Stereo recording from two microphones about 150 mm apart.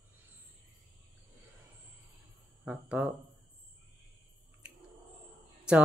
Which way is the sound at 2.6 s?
10° right (ahead or behind).